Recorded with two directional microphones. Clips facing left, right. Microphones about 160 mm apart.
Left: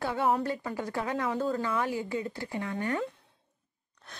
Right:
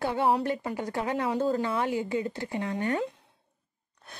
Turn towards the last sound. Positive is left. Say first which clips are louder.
# right 3 dB
turn(degrees=-20)  # may be behind; listen again after turning